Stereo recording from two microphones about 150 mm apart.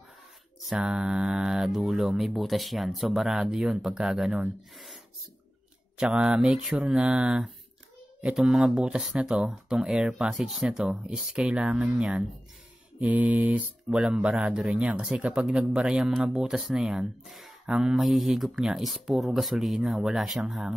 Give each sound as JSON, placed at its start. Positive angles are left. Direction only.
{"t": 0.7, "sound": "speech", "side_deg": -5}
{"t": 5.9, "sound": "speech", "side_deg": -5}